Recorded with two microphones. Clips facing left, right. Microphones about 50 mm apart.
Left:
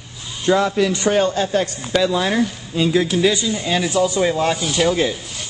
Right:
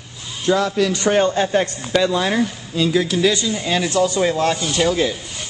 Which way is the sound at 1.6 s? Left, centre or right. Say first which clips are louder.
Even; centre.